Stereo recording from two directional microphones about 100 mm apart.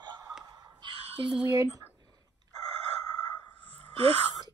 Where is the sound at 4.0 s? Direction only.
75° right (ahead or behind).